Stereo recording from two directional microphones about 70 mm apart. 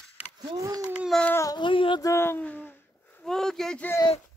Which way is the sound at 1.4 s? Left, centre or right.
Left.